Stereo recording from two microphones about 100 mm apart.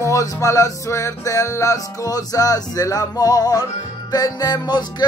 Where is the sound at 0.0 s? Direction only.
30° left (ahead or behind).